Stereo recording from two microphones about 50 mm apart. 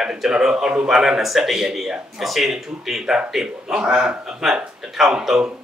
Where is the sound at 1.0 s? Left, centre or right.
Centre.